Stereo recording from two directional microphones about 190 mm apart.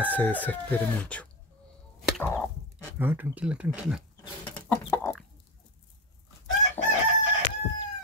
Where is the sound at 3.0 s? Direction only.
10° right (ahead or behind).